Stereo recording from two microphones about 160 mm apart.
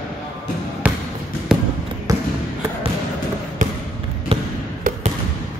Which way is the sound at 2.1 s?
20° right (ahead or behind).